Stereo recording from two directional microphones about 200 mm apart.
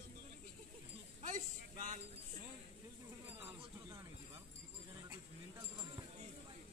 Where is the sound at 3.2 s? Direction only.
10° right (ahead or behind).